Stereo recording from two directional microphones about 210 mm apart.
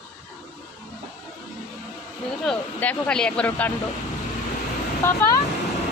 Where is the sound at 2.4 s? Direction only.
5° left (ahead or behind).